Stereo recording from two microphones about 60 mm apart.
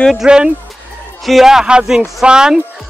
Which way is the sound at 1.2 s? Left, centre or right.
Centre.